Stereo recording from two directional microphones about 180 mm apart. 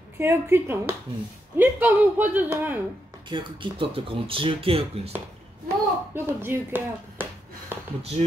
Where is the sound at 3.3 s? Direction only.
25° right (ahead or behind).